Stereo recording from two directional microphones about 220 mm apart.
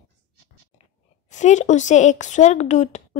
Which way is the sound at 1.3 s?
35° left (ahead or behind).